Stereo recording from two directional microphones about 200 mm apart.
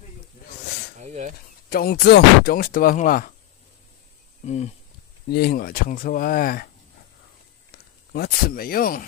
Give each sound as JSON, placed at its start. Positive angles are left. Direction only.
{"t": 0.9, "sound": "a sound", "side_deg": -35}
{"t": 1.7, "sound": "speech", "side_deg": 50}
{"t": 4.5, "sound": "speech", "side_deg": 35}
{"t": 5.3, "sound": "speech", "side_deg": 50}
{"t": 8.1, "sound": "speech", "side_deg": 50}